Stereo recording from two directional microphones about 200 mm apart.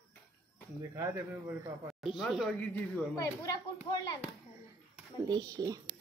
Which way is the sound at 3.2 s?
15° left (ahead or behind).